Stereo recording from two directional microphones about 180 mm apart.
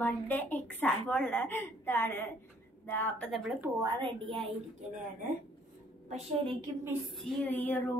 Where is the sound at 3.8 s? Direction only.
25° right (ahead or behind).